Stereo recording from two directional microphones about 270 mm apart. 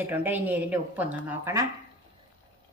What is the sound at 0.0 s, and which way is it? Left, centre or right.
Speech, centre.